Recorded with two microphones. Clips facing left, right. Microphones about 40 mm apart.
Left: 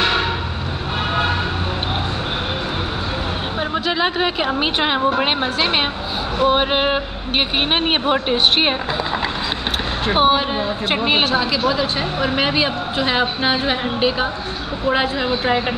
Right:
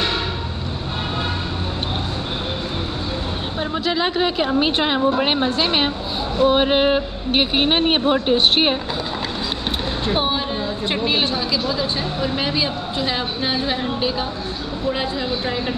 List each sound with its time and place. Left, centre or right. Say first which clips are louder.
4.5 s speech: even; left
10.0 s speech: left 7 dB; left